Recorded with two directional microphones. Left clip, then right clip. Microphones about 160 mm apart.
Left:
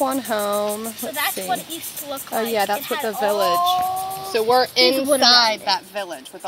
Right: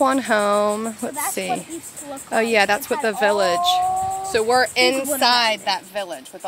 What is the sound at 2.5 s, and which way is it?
Speech, 25° right (ahead or behind).